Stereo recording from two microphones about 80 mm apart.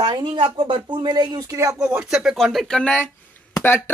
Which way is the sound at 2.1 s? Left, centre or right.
Centre.